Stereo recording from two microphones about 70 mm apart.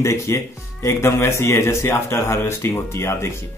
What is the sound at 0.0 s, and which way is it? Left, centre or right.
Speech, left.